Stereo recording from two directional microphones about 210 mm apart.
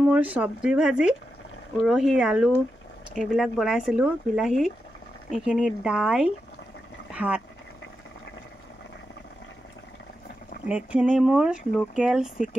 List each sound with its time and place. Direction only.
0.0 s speech: 5° right (ahead or behind)
7.1 s a sound: 5° right (ahead or behind)
10.7 s speech: 5° right (ahead or behind)